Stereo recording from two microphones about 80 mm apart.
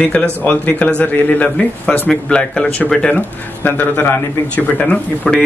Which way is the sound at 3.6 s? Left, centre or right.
Left.